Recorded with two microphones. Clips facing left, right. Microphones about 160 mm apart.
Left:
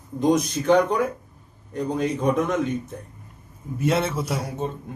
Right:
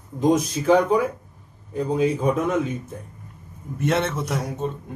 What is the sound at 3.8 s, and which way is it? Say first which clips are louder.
Speech: even; centre (ahead or behind).